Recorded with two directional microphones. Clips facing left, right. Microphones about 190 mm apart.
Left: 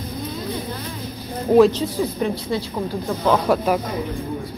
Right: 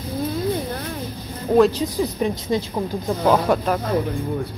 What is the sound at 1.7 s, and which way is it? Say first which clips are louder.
Speech: even; 15° right (ahead or behind).